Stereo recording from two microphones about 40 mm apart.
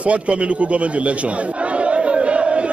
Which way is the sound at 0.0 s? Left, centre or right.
Right.